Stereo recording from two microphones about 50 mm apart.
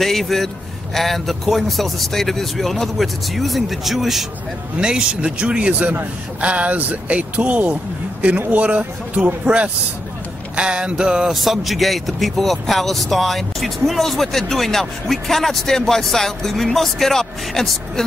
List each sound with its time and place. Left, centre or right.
0.0 s speech: centre
4.7 s speech: centre
10.5 s a sound: centre
11.3 s speech: centre